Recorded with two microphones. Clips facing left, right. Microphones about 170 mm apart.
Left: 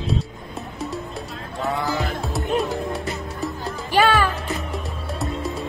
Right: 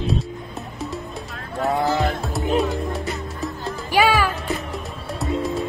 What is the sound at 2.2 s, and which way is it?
Music, centre (ahead or behind).